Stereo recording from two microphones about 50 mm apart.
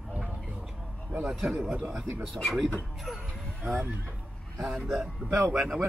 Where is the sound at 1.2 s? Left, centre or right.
Centre.